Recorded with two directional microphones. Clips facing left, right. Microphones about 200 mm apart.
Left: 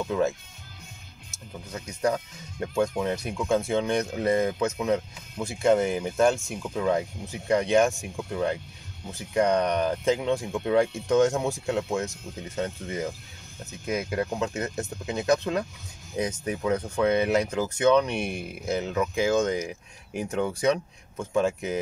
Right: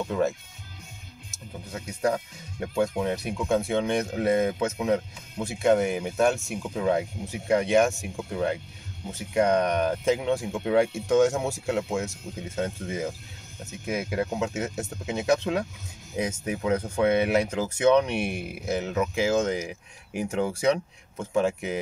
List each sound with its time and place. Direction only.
0.0 s speech: 5° right (ahead or behind)
1.7 s speech: 5° right (ahead or behind)